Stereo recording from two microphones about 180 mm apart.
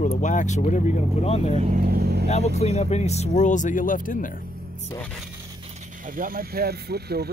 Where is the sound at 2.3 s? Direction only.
35° left (ahead or behind).